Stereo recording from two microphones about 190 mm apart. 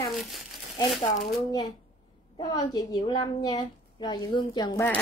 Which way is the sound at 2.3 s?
20° left (ahead or behind).